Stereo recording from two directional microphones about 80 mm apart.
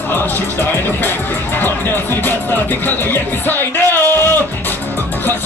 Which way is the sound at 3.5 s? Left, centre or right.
Left.